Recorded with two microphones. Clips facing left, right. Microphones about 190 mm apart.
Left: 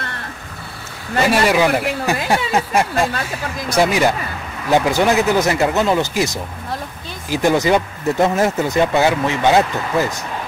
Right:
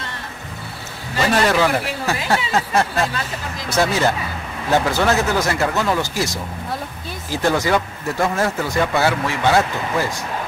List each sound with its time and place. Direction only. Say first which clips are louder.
1.3 s speech: left 1 dB; 15° left (ahead or behind)